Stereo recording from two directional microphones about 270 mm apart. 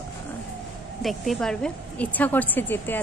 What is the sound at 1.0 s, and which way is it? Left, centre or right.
A woman's voice, centre.